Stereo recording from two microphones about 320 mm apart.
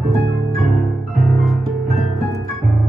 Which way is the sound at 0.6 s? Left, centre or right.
Centre.